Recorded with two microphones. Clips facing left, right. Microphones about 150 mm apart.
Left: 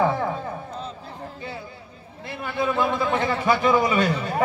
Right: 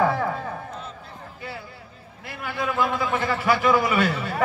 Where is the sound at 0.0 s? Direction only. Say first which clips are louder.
Even; 15° left (ahead or behind).